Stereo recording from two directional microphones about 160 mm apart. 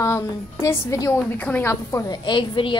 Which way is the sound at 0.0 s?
20° left (ahead or behind).